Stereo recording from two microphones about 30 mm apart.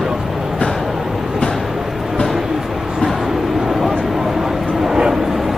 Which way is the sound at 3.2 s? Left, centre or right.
Centre.